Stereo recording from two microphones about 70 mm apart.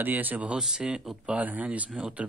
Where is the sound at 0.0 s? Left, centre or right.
Right.